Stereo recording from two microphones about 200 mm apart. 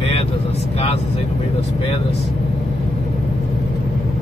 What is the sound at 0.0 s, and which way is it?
Vehicle, 30° left (ahead or behind).